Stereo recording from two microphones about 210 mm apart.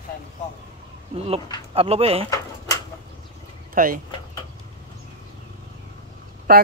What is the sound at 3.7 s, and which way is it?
Speech, 40° right (ahead or behind).